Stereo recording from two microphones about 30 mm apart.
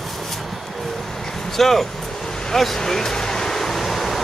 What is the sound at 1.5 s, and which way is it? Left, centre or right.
Vehicle, centre.